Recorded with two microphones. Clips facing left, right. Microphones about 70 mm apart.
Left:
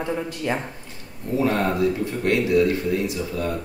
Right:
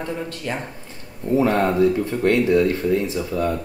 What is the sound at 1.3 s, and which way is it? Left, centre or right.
Speech, right.